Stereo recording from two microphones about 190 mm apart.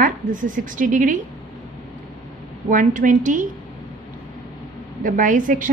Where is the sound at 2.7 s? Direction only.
45° right (ahead or behind).